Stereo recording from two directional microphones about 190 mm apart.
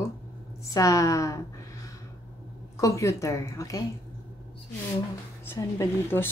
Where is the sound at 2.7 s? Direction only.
15° left (ahead or behind).